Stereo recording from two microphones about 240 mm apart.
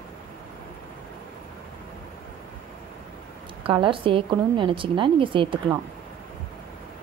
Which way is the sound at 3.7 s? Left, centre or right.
Right.